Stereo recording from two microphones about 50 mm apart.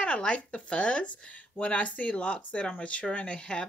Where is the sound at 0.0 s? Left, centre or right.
Left.